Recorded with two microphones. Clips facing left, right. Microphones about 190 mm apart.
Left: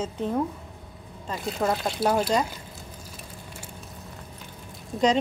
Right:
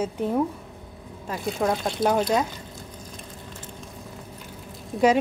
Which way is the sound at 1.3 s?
Centre (ahead or behind).